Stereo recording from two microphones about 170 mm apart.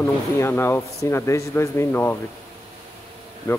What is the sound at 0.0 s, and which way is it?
Speech, 15° left (ahead or behind).